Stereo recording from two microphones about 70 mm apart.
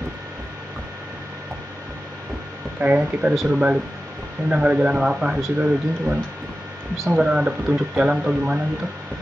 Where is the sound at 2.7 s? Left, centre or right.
Right.